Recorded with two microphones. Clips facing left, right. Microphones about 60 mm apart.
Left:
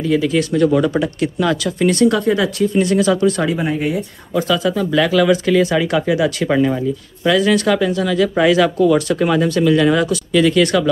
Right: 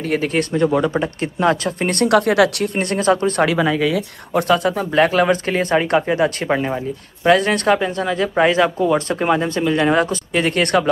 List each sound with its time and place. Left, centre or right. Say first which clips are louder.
0.0 s speech: left 3 dB; right
0.5 s speech: left 2 dB; right
3.4 s speech: right 2 dB; right
4.3 s speech: right 1 dB; right
6.5 s speech: left 4 dB; right
7.2 s speech: even; right